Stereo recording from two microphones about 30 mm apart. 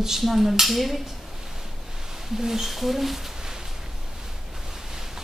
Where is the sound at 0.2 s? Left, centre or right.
Centre.